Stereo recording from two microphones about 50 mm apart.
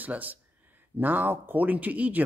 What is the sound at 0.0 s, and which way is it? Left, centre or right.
Speech, right.